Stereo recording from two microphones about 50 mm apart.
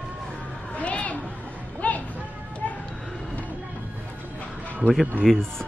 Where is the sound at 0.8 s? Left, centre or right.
Left.